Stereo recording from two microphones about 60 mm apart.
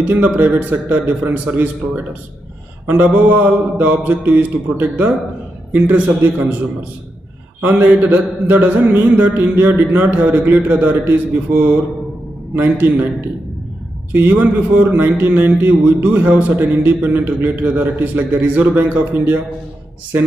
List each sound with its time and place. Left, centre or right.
0.1 s a man's voice: right
2.9 s a man's voice: right
7.6 s a man's voice: right
14.1 s a man's voice: right